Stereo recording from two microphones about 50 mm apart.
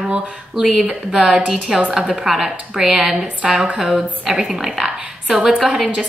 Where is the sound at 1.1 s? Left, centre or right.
Centre.